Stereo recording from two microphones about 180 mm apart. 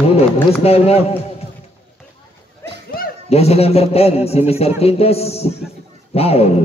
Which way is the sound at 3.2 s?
35° left (ahead or behind).